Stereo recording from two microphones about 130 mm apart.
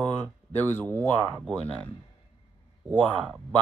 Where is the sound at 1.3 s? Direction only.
5° left (ahead or behind).